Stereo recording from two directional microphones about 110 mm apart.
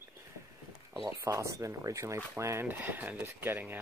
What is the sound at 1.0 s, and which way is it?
Speech, 30° right (ahead or behind).